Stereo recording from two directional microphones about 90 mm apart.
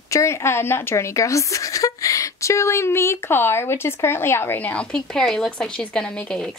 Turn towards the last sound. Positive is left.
turn(degrees=10)  # may be behind; listen again after turning